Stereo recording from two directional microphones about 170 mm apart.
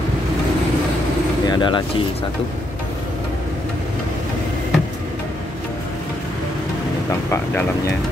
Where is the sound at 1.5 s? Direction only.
30° left (ahead or behind).